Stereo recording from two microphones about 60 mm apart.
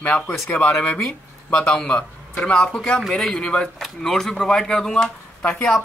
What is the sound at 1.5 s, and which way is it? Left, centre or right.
Speech, centre.